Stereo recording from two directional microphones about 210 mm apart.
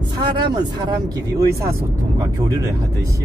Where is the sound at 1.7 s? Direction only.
15° right (ahead or behind).